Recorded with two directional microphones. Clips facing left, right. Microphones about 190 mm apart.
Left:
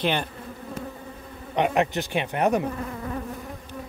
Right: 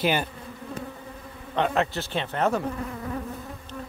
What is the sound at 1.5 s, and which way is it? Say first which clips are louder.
Speech: left 2 dB; 15° left (ahead or behind).